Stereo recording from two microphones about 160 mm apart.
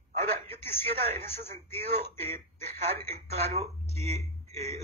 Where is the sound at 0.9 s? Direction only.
40° right (ahead or behind).